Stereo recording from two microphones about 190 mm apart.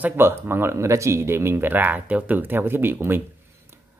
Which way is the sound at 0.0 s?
10° right (ahead or behind).